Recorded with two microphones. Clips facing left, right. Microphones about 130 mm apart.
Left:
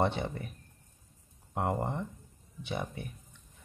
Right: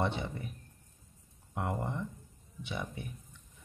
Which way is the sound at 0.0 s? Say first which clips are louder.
Left 3 dB; 50° left (ahead or behind).